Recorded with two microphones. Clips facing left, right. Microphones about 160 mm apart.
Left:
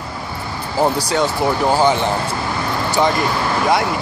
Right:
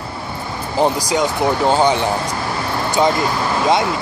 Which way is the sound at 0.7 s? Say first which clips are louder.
Even; 15° right (ahead or behind).